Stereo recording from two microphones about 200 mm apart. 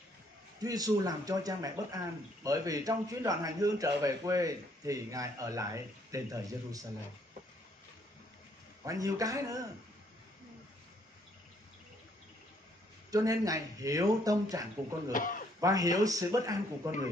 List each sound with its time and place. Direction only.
0.6 s a man's voice: 20° right (ahead or behind)
8.8 s a man's voice: 15° right (ahead or behind)
13.1 s a man's voice: 15° right (ahead or behind)
15.1 s speech: 40° left (ahead or behind)
15.6 s a man's voice: 15° right (ahead or behind)